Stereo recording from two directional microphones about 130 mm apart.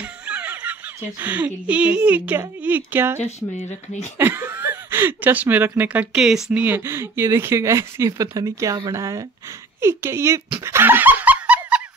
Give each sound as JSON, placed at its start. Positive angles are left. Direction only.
{"t": 0.0, "sound": "a sound", "side_deg": -10}
{"t": 1.2, "sound": "a woman's voice", "side_deg": -10}
{"t": 3.2, "sound": "speech", "side_deg": 60}
{"t": 4.2, "sound": "speech", "side_deg": -15}
{"t": 6.6, "sound": "speech", "side_deg": -20}
{"t": 10.6, "sound": "laughter", "side_deg": -20}